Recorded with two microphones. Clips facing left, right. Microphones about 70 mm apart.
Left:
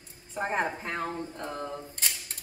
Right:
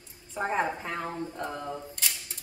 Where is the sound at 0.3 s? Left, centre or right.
Left.